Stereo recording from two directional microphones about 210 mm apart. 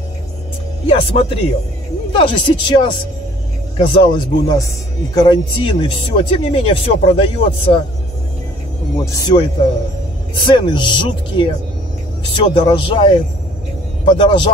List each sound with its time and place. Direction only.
0.8 s speech: 30° left (ahead or behind)
8.9 s speech: 20° left (ahead or behind)
10.4 s speech: 20° left (ahead or behind)